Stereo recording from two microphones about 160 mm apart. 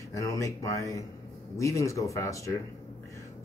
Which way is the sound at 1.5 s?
20° left (ahead or behind).